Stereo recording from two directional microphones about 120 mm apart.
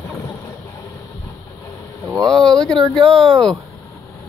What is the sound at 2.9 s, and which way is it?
Speech, 5° left (ahead or behind).